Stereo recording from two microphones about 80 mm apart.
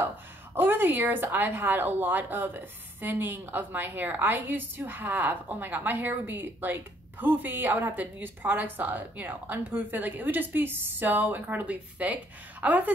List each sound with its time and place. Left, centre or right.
0.6 s a woman's voice: right